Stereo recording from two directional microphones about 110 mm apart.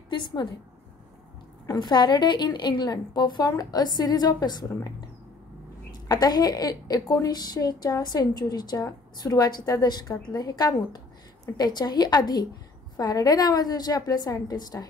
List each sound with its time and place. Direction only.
0.1 s a woman's voice: 45° left (ahead or behind)
1.7 s a woman's voice: 40° left (ahead or behind)
6.0 s a woman's voice: 40° left (ahead or behind)